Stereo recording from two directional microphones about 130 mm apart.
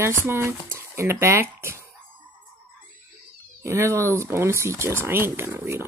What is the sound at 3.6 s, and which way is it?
Speech, 20° right (ahead or behind).